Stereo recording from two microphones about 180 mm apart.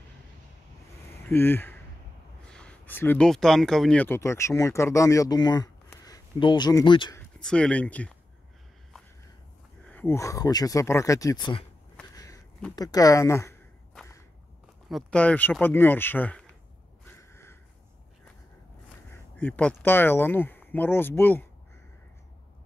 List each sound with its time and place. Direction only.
1.3 s speech: 10° left (ahead or behind)
7.2 s speech: 5° left (ahead or behind)
9.8 s speech: 10° left (ahead or behind)
12.7 s speech: 20° left (ahead or behind)
14.9 s speech: 5° left (ahead or behind)
17.0 s a sound: 15° left (ahead or behind)
19.3 s speech: 10° left (ahead or behind)